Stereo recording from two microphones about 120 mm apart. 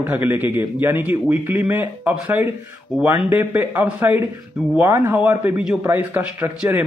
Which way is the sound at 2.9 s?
5° right (ahead or behind).